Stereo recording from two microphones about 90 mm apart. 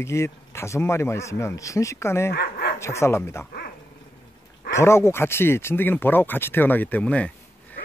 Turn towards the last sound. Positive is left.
turn(degrees=15)  # may be behind; listen again after turning